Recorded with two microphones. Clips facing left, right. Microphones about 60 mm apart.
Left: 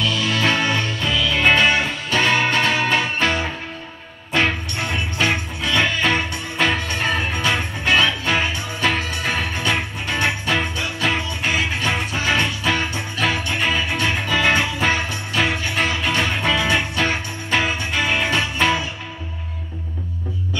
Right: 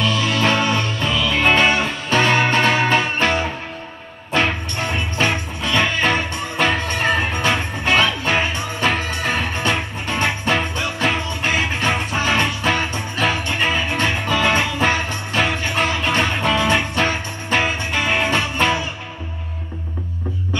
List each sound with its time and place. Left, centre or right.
0.0 s music: right